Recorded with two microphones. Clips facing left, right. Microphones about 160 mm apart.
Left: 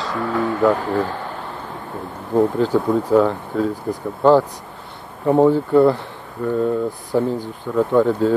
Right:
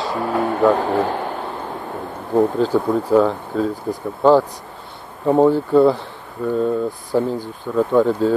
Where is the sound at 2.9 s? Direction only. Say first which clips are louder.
Even; 5° right (ahead or behind).